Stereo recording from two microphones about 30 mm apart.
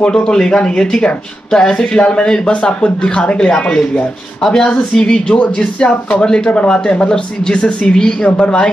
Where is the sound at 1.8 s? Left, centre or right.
Left.